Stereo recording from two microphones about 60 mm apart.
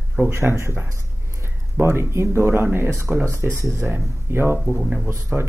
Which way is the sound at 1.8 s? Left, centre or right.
Right.